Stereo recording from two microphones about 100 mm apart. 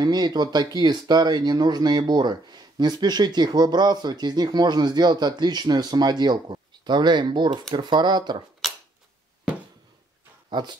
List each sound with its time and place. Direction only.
0.0 s speech: 45° right (ahead or behind)
10.5 s speech: 45° right (ahead or behind)